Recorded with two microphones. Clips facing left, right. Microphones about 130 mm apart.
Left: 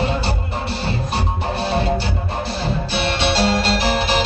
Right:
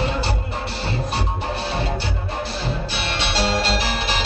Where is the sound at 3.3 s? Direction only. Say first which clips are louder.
Even; 55° left (ahead or behind).